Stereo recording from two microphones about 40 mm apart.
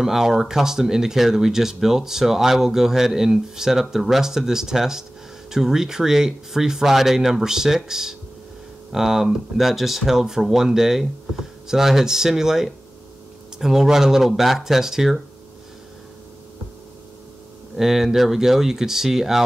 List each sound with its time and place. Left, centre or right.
0.0 s speech: centre
17.7 s speech: centre